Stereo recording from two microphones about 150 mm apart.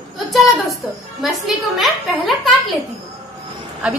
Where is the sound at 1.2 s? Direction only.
Centre (ahead or behind).